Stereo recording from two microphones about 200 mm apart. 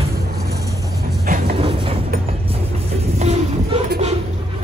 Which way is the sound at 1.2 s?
45° right (ahead or behind).